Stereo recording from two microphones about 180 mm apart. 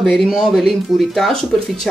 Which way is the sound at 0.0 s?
Centre (ahead or behind).